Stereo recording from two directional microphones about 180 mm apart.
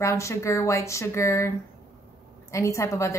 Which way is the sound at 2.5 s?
15° left (ahead or behind).